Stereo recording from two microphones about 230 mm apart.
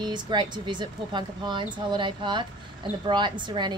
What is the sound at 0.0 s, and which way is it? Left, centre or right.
Speech, centre.